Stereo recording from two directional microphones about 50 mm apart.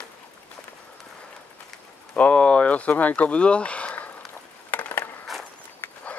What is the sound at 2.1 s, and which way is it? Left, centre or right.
Speech, left.